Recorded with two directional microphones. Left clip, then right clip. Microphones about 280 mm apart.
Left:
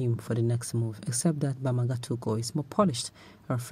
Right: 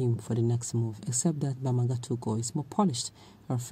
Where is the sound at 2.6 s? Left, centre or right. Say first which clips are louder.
Left 3 dB; centre.